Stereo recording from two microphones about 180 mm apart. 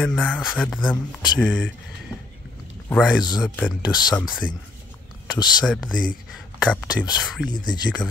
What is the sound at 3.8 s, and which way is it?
Speech, 25° left (ahead or behind).